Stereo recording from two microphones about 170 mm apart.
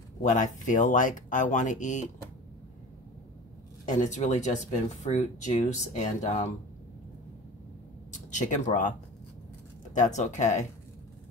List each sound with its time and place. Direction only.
0.2 s speech: 45° left (ahead or behind)
3.8 s speech: 45° left (ahead or behind)
8.1 s speech: 45° left (ahead or behind)
9.9 s speech: 45° left (ahead or behind)